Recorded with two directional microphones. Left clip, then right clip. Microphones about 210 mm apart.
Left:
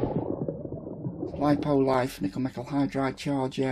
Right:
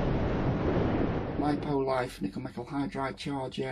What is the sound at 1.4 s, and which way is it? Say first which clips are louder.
Speech: left 7 dB; 45° left (ahead or behind).